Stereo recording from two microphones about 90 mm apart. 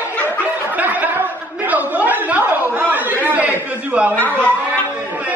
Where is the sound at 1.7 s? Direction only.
15° right (ahead or behind).